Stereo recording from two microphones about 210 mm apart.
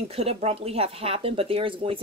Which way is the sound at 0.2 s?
30° right (ahead or behind).